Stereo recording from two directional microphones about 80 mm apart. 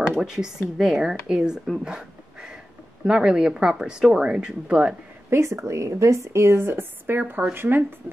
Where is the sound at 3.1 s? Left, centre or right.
Centre.